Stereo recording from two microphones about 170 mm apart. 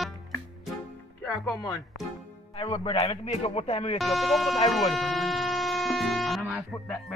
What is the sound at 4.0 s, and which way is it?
Speech, centre (ahead or behind).